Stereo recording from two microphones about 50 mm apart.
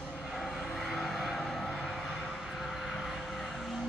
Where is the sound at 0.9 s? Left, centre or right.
Centre.